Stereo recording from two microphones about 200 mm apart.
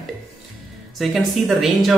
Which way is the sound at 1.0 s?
Centre (ahead or behind).